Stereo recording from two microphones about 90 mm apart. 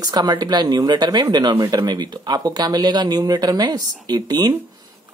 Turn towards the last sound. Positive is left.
turn(degrees=-50)  # may be behind; listen again after turning